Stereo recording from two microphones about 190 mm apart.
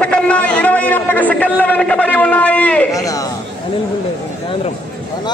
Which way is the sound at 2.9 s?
20° left (ahead or behind).